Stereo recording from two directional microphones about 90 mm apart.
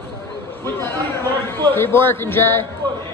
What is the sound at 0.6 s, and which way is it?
A man's voice, 25° left (ahead or behind).